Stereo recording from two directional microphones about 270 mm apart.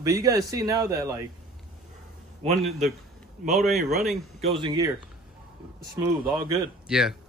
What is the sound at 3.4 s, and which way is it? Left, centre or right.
Speech, right.